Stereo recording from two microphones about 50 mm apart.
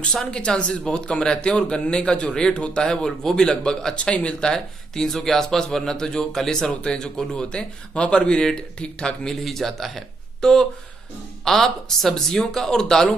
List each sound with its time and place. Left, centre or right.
0.0 s speech: centre
6.7 s speech: centre
9.4 s speech: centre